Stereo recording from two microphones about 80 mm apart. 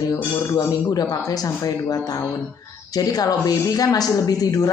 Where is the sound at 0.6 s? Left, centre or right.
Left.